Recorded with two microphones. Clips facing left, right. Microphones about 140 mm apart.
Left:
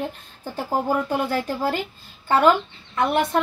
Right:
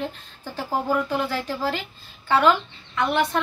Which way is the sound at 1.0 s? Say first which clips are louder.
Left 2 dB; 45° left (ahead or behind).